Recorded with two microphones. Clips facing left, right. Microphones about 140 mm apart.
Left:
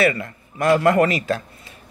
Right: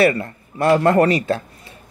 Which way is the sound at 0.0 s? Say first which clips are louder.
Right 3 dB; 30° right (ahead or behind).